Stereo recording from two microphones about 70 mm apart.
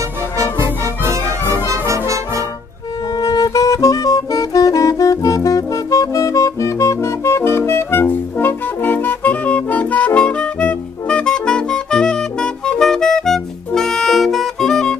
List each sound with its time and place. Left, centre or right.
1.7 s brass instrument: right
3.2 s music: left; by 15.0 s centre